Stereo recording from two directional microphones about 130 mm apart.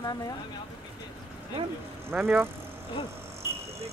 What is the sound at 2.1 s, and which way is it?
Speech, 15° right (ahead or behind).